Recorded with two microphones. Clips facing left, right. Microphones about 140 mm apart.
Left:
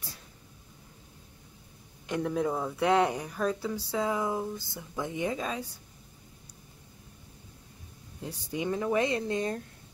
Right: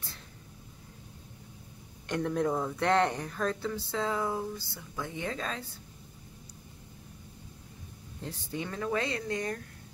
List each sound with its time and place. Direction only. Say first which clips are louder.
2.0 s speech: even; 5° left (ahead or behind)
8.2 s speech: left 3 dB; 10° left (ahead or behind)